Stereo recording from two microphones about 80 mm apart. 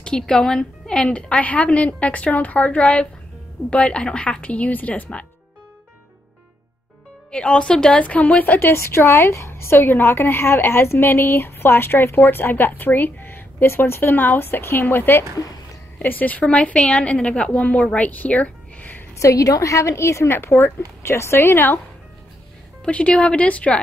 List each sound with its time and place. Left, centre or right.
0.0 s a woman's voice: centre
7.2 s a woman's voice: centre
17.9 s a sound: centre
19.1 s a woman's voice: left
22.8 s a woman's voice: centre